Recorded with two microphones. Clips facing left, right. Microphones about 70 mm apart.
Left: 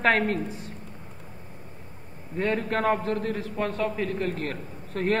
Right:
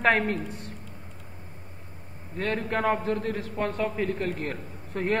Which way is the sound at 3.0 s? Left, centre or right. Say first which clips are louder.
Even; right.